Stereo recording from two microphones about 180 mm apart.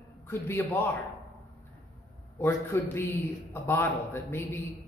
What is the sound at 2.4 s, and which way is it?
A man's voice, 15° left (ahead or behind).